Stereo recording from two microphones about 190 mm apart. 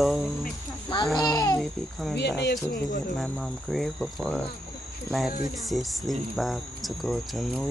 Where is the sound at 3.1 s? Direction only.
Centre (ahead or behind).